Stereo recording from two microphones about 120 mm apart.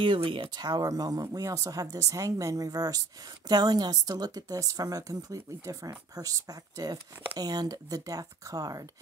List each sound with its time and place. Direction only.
0.0 s speech: 45° right (ahead or behind)